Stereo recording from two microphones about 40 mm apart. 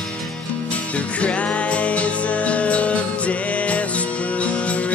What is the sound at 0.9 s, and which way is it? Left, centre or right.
Music, left.